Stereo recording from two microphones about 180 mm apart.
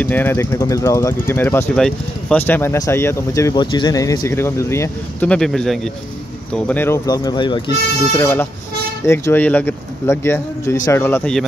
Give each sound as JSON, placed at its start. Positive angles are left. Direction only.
{"t": 0.0, "sound": "speech", "side_deg": 10}
{"t": 8.1, "sound": "speech", "side_deg": 15}